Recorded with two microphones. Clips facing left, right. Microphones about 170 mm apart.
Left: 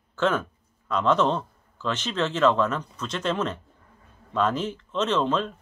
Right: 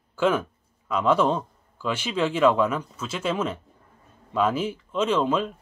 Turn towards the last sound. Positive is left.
turn(degrees=-10)  # may be behind; listen again after turning